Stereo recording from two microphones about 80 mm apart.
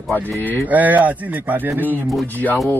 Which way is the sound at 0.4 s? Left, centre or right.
Left.